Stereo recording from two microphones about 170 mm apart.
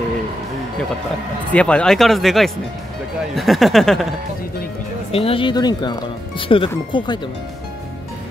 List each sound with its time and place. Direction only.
1.5 s speech: 5° left (ahead or behind)
5.1 s speech: 35° left (ahead or behind)